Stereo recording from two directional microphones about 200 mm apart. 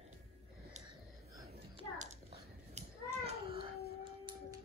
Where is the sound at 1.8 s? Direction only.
30° right (ahead or behind).